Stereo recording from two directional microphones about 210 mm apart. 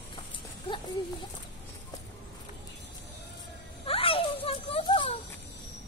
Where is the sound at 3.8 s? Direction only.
25° left (ahead or behind).